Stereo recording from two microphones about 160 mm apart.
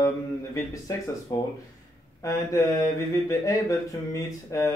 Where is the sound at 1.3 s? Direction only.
20° left (ahead or behind).